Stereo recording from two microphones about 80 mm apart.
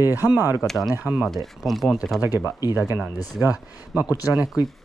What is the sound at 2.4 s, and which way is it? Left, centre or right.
Speech, left.